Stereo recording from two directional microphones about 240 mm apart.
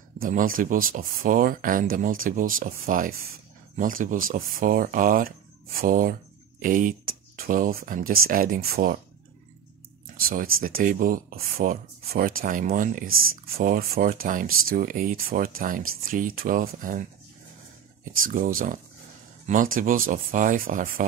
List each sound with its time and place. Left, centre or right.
0.2 s speech: right
10.2 s speech: right
18.3 s speech: right